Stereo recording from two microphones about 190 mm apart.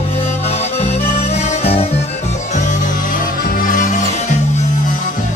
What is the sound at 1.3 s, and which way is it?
Music, 30° left (ahead or behind).